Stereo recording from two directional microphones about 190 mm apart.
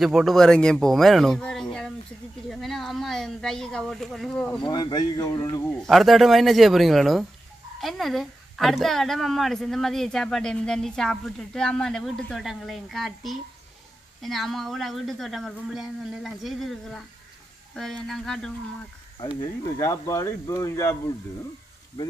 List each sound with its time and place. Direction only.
0.0 s a woman's voice: centre (ahead or behind)
4.6 s speech: 25° left (ahead or behind)
5.8 s a woman's voice: centre (ahead or behind)
19.4 s speech: 15° left (ahead or behind)